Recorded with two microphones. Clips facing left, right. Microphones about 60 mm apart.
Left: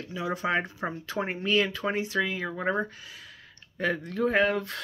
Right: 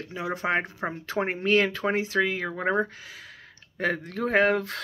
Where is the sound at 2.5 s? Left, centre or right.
Right.